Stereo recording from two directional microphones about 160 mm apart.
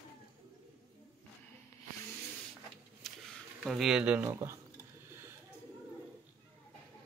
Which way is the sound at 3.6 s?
Centre (ahead or behind).